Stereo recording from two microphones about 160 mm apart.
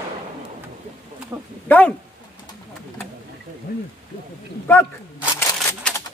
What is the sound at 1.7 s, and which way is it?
Speech, 10° left (ahead or behind).